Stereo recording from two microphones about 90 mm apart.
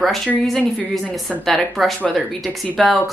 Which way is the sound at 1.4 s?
Centre (ahead or behind).